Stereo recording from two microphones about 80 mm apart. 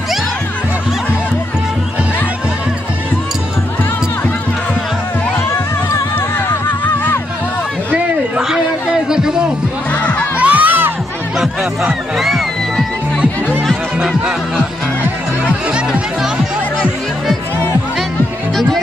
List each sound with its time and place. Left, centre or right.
8.4 s a sound: centre
9.9 s music: centre
10.3 s crowd: centre
11.3 s music: centre
15.7 s music: centre